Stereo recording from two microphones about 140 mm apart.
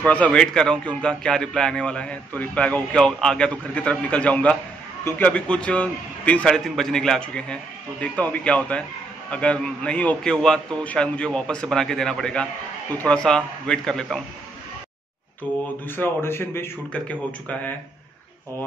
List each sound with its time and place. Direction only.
0.0 s a man's voice: 10° left (ahead or behind)
16.0 s a man's voice: 15° left (ahead or behind)